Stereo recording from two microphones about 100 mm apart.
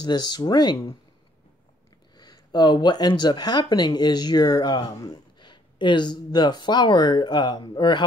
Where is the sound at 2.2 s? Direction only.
45° left (ahead or behind).